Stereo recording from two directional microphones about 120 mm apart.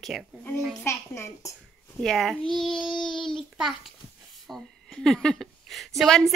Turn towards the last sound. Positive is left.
turn(degrees=0)  # may be behind; listen again after turning